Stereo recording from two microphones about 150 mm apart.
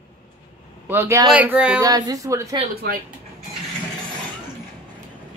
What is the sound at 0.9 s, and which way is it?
Speech, 15° right (ahead or behind).